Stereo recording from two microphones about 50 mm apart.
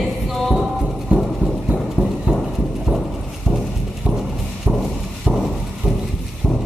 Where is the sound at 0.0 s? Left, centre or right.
Centre.